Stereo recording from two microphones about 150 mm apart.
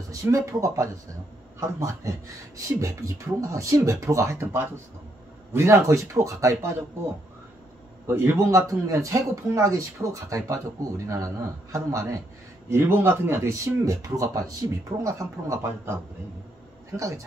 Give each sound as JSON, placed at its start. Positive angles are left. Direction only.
{"t": 0.1, "sound": "speech", "side_deg": -20}
{"t": 8.1, "sound": "speech", "side_deg": -15}